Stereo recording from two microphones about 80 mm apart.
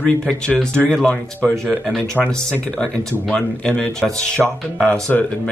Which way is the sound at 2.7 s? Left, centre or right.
Centre.